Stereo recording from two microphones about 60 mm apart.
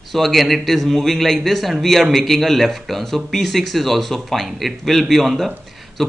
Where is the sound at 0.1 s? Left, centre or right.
Centre.